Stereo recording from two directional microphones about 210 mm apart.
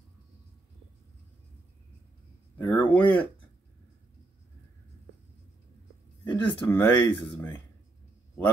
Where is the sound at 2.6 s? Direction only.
10° left (ahead or behind).